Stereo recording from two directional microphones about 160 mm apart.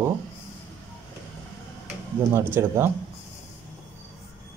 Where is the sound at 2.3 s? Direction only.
15° right (ahead or behind).